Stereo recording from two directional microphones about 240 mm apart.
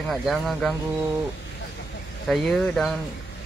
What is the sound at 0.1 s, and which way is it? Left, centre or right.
Speech, centre.